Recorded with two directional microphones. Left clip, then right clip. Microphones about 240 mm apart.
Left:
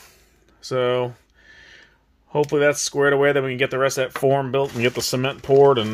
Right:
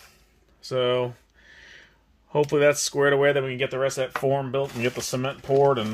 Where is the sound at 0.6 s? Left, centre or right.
Left.